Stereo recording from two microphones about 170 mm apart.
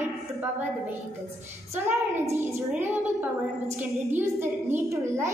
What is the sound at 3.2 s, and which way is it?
A child's voice, 15° right (ahead or behind).